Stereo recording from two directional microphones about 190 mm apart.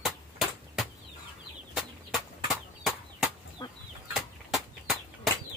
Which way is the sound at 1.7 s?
Centre (ahead or behind).